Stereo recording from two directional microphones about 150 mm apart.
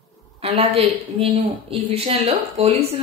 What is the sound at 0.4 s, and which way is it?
A woman's voice, 40° right (ahead or behind).